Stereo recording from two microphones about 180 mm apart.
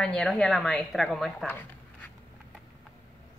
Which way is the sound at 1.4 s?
10° left (ahead or behind).